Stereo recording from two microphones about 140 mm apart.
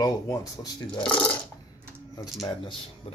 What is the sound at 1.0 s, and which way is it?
Speech, 10° left (ahead or behind).